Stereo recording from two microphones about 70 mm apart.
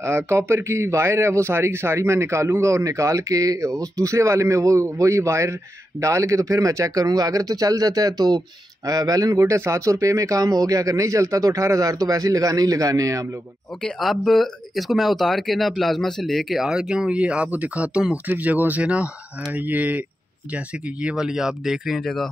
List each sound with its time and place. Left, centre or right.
0.0 s a man's voice: right
13.8 s speech: centre
22.0 s speech: centre